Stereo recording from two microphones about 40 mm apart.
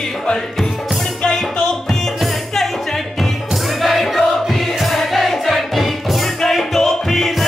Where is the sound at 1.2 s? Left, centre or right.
Centre.